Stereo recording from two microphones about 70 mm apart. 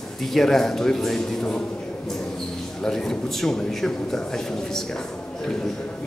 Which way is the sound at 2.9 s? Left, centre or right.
Centre.